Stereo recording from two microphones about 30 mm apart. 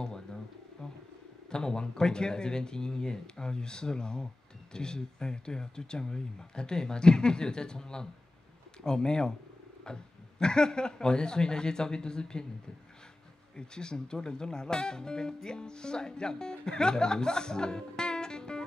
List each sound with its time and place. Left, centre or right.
0.0 s bird: left
1.5 s speech: left
9.9 s pig: left
10.4 s speech: left
13.6 s speech: left